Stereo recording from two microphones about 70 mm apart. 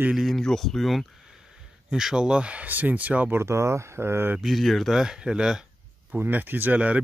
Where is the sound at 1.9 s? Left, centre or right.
Centre.